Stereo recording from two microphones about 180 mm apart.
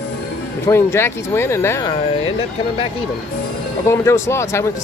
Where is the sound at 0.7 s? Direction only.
15° left (ahead or behind).